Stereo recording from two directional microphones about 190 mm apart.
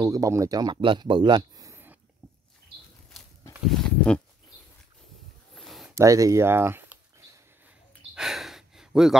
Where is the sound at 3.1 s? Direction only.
Centre (ahead or behind).